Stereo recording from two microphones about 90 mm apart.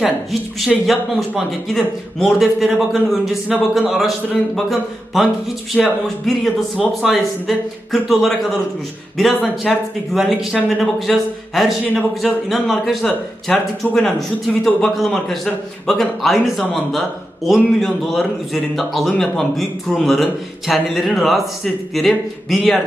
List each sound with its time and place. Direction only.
0.0 s a man's voice: 5° right (ahead or behind)